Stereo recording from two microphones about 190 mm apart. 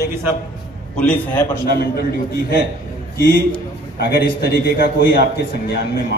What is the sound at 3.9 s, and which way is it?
A man's voice, 55° left (ahead or behind).